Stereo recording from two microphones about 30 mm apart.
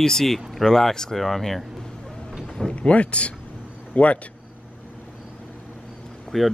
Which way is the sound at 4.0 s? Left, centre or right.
Left.